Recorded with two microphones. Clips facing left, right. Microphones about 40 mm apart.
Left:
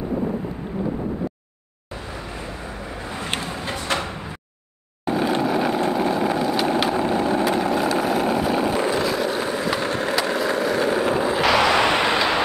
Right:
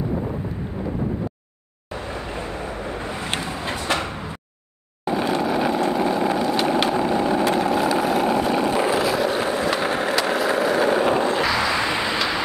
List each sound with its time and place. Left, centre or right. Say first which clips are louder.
2.1 s vehicle: right 3 dB; centre
5.0 s vehicle: left 1 dB; centre
10.1 s skateboard: right 1 dB; centre
11.4 s a sound: left 4 dB; left